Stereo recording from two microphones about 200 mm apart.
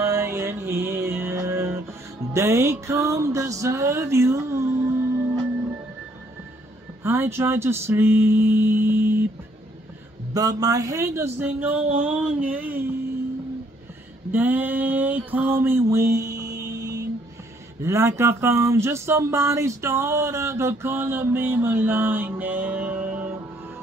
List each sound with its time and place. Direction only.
0.0 s music: 15° right (ahead or behind)
2.3 s speech: 15° right (ahead or behind)
7.0 s mantra: 10° right (ahead or behind)
10.3 s speech: 20° right (ahead or behind)
14.3 s mantra: 10° right (ahead or behind)
17.8 s speech: 15° right (ahead or behind)